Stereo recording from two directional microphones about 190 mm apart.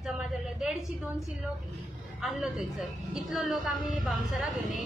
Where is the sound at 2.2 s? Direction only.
5° right (ahead or behind).